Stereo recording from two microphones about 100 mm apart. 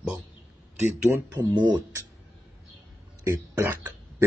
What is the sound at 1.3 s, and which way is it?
Speech, 45° right (ahead or behind).